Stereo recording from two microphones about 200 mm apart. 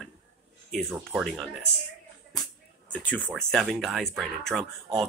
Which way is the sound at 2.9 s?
5° left (ahead or behind).